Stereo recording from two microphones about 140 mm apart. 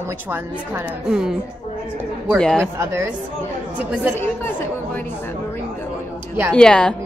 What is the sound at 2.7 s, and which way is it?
A woman's voice, 20° right (ahead or behind).